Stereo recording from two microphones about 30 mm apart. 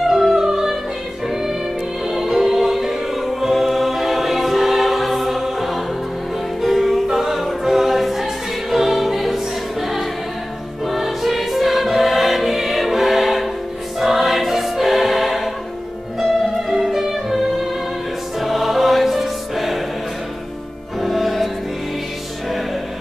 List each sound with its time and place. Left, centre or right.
0.0 s music: centre
7.1 s choir: centre
10.9 s music: centre
13.9 s choir: centre
16.2 s music: centre
21.0 s music: centre